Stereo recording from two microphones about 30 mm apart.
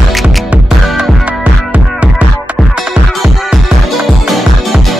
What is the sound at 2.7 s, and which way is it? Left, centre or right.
Music, right.